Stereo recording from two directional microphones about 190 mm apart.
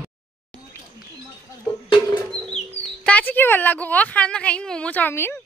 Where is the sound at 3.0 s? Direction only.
5° left (ahead or behind).